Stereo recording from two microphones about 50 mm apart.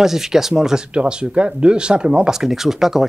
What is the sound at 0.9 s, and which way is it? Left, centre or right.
Speech, right.